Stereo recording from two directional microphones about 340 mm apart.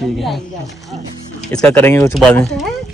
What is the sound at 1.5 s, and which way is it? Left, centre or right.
A man's voice, centre.